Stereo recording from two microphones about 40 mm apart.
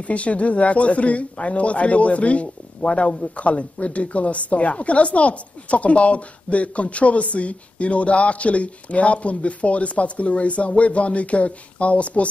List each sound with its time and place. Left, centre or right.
0.0 s speech: left